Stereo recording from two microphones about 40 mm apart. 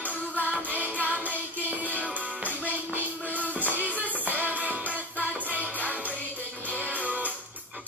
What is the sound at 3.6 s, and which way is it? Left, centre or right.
Music, right.